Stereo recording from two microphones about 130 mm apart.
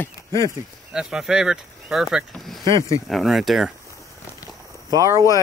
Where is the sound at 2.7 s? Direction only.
25° left (ahead or behind).